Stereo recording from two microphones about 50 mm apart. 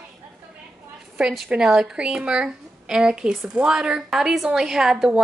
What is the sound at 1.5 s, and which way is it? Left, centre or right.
A woman's voice, centre.